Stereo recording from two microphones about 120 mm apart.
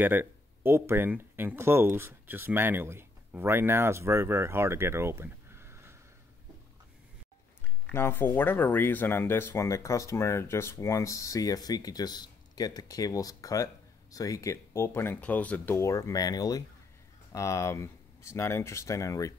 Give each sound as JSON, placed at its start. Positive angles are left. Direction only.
{"t": 0.0, "sound": "speech", "side_deg": -15}
{"t": 7.9, "sound": "speech", "side_deg": 20}